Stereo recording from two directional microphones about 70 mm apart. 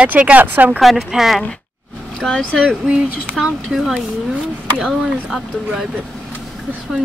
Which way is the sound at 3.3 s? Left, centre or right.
Centre.